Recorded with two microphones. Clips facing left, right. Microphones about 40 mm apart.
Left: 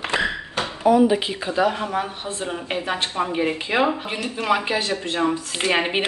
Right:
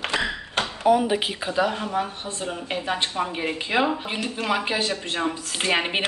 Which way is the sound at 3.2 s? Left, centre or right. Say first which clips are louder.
Left 4 dB; centre.